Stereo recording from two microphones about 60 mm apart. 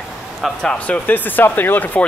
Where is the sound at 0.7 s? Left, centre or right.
Left.